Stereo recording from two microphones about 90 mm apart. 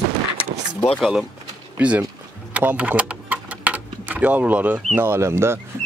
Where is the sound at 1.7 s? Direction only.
15° right (ahead or behind).